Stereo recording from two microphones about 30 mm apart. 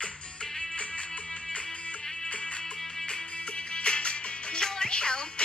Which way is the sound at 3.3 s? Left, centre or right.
Left.